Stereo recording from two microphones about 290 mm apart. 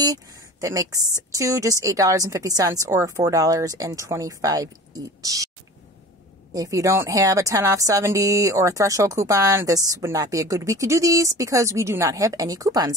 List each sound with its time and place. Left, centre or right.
0.0 s a woman's voice: centre
6.5 s a woman's voice: centre